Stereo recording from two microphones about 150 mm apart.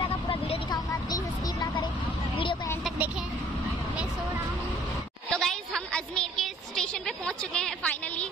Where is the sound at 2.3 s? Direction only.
35° left (ahead or behind).